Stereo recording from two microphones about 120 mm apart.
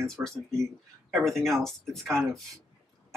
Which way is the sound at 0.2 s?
20° right (ahead or behind).